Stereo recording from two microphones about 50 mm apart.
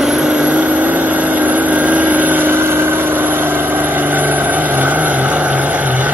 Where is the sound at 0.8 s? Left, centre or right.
Right.